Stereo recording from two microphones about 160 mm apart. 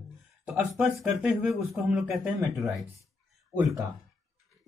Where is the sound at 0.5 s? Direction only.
5° right (ahead or behind).